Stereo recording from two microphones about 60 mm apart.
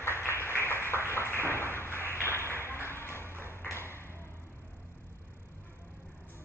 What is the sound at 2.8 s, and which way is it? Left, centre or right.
Music, left.